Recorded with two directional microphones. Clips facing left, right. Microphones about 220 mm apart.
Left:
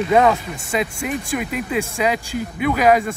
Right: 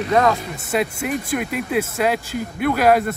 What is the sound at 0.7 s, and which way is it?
Speech, centre (ahead or behind).